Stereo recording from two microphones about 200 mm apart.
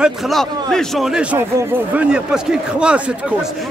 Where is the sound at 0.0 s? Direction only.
Centre (ahead or behind).